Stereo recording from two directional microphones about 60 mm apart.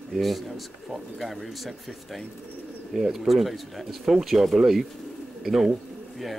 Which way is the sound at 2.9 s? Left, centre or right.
Centre.